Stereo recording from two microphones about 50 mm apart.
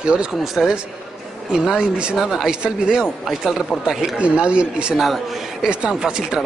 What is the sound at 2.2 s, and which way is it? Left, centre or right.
Speech, centre.